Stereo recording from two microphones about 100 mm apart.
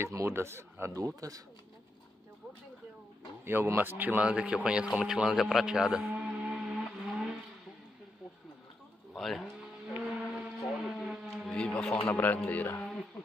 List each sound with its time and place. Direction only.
0.0 s speech: 25° right (ahead or behind)
0.9 s speech: 35° right (ahead or behind)
3.4 s speech: 25° right (ahead or behind)
4.9 s music: 5° right (ahead or behind)
9.1 s a sound: centre (ahead or behind)
11.5 s a man's voice: 10° left (ahead or behind)